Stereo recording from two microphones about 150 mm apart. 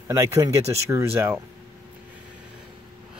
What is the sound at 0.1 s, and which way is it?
Speech, 20° right (ahead or behind).